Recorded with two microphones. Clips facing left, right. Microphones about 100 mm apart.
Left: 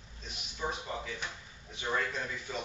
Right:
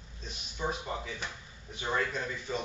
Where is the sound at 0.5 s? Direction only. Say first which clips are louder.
Right 2 dB; 5° right (ahead or behind).